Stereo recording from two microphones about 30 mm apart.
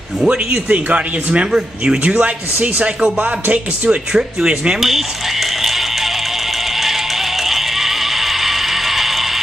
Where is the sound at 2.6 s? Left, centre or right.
Right.